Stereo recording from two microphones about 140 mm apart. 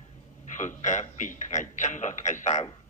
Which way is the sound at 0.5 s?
60° left (ahead or behind).